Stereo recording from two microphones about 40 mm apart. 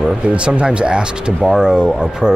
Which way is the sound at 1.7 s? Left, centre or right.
Centre.